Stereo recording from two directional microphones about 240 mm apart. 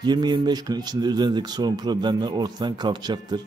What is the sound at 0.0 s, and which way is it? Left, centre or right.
A man's voice, centre.